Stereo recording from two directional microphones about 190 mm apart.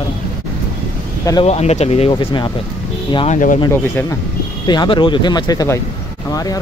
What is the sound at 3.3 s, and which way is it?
Speech, 45° left (ahead or behind).